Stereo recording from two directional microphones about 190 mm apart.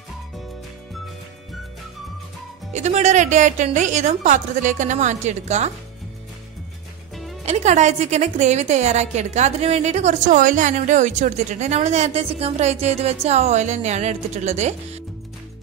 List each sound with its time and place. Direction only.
2.7 s a woman's voice: 35° right (ahead or behind)
7.4 s a woman's voice: 35° right (ahead or behind)